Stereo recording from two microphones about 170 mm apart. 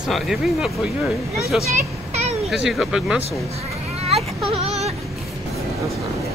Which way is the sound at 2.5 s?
5° right (ahead or behind).